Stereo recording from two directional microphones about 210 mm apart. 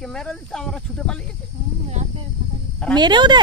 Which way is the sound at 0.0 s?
Centre (ahead or behind).